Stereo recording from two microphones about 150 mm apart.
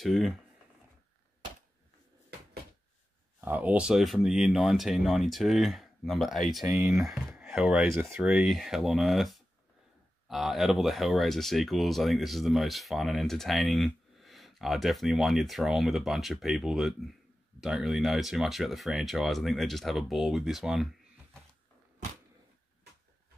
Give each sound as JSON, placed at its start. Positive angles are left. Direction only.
{"t": 0.0, "sound": "speech", "side_deg": 0}
{"t": 3.3, "sound": "speech", "side_deg": -10}